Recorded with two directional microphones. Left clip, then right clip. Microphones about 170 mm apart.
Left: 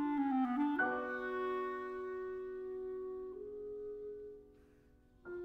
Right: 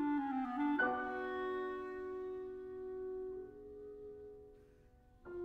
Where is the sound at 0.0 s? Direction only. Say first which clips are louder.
Left 2 dB; 45° left (ahead or behind).